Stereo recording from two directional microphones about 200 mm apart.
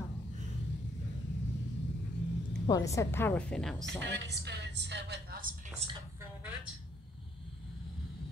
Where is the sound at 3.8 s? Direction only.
60° right (ahead or behind).